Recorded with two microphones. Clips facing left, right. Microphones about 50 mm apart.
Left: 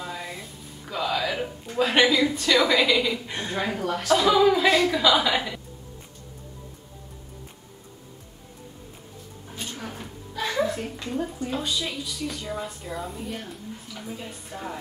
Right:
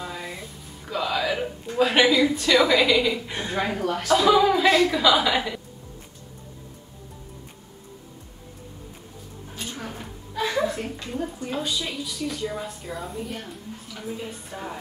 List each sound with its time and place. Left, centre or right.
0.0 s a woman's voice: centre
9.7 s a sound: centre
11.4 s a woman's voice: centre